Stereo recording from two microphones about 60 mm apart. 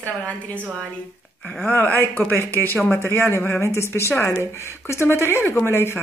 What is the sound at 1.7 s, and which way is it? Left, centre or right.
A woman's voice, left.